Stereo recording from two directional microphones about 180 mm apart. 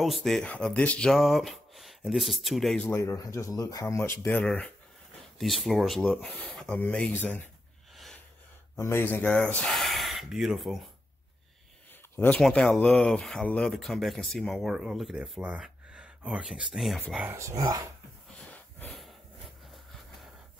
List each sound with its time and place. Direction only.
0.0 s speech: centre (ahead or behind)
7.9 s a sound: centre (ahead or behind)
8.7 s speech: 10° left (ahead or behind)
12.2 s speech: 5° left (ahead or behind)
17.3 s speech: 15° right (ahead or behind)
18.4 s a sound: 5° left (ahead or behind)